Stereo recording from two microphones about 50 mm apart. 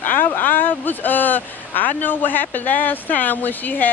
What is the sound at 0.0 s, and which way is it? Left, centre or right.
Speech, left.